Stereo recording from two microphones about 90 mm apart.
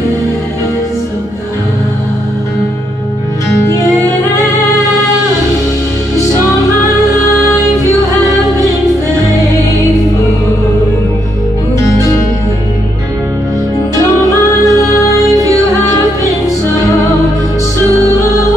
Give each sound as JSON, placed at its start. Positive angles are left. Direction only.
{"t": 11.8, "sound": "music", "side_deg": 35}
{"t": 14.3, "sound": "music", "side_deg": 35}
{"t": 16.4, "sound": "music", "side_deg": 35}